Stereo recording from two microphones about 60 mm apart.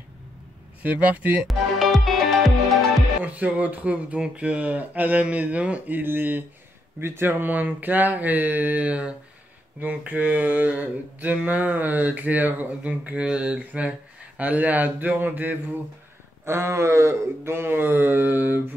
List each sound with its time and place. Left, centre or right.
0.8 s speech: right
1.5 s music: centre
3.2 s speech: right
16.4 s speech: right